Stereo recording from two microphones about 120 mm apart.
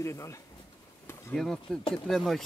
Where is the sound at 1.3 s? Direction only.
5° left (ahead or behind).